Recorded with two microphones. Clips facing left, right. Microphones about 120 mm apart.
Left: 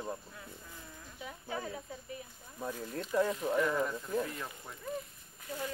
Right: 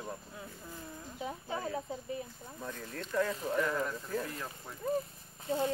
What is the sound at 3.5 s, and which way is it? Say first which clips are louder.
Speech: even; 5° left (ahead or behind).